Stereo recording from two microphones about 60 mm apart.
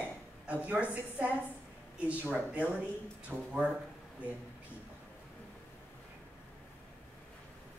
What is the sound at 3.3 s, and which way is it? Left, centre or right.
Speech, centre.